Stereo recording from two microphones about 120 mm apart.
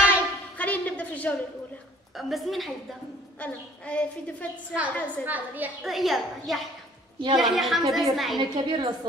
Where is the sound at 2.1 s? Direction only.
Centre (ahead or behind).